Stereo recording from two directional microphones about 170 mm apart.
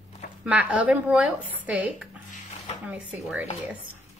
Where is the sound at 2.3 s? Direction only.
40° left (ahead or behind).